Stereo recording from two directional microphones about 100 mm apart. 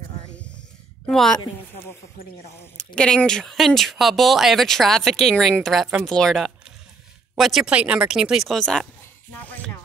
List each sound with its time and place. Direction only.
0.4 s a sound: 10° left (ahead or behind)
2.8 s speech: 10° left (ahead or behind)
9.3 s speech: 15° left (ahead or behind)